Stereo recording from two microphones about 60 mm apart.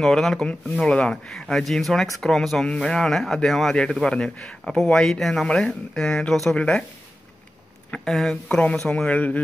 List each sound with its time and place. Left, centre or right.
0.0 s speech: centre
7.9 s speech: centre
8.8 s a man's voice: left